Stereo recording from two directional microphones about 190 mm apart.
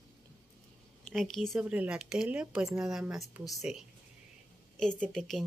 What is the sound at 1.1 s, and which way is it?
A woman's voice, centre (ahead or behind).